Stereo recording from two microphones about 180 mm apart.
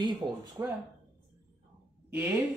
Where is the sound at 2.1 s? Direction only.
10° right (ahead or behind).